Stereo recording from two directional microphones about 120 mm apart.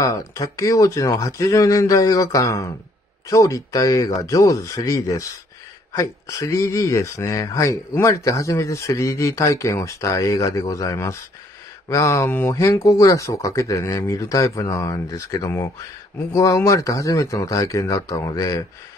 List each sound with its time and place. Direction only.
0.0 s speech: 30° left (ahead or behind)